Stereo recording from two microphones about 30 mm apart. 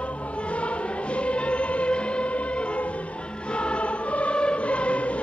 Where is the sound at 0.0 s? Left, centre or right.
Left.